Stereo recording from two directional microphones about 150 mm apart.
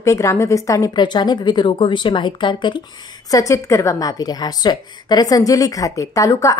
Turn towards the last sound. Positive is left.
turn(degrees=20)  # may be behind; listen again after turning